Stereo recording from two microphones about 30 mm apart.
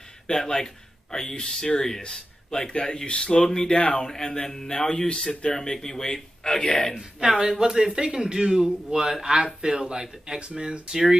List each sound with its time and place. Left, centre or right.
0.3 s speech: centre
7.3 s speech: right